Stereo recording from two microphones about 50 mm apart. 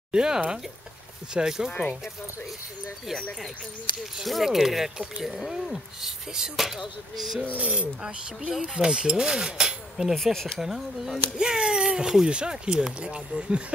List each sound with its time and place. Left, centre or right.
0.1 s speech: centre
1.7 s speech: left
4.2 s speech: centre
7.5 s speech: right
10.1 s speech: centre
10.6 s speech: centre